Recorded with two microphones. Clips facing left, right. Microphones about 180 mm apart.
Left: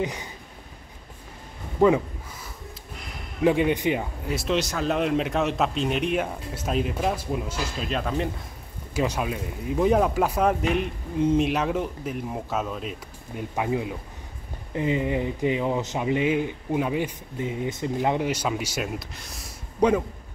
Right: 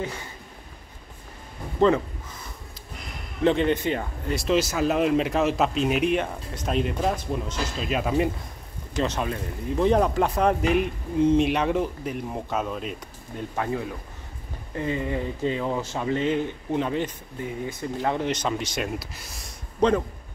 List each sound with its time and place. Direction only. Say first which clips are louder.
0.0 s speech: left 3 dB; 15° left (ahead or behind)
1.8 s speech: left 1 dB; 10° left (ahead or behind)
3.4 s speech: even; 10° left (ahead or behind)
4.3 s speech: right 3 dB; centre (ahead or behind)
7.9 s speech: right 4 dB; 10° right (ahead or behind)
8.9 s speech: even; 10° left (ahead or behind)
13.4 s speech: left 2 dB; 15° left (ahead or behind); by 19.5 s centre (ahead or behind)
19.8 s speech: even; 10° left (ahead or behind)